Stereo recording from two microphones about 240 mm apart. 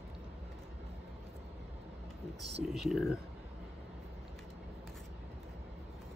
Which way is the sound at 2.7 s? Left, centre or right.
Centre.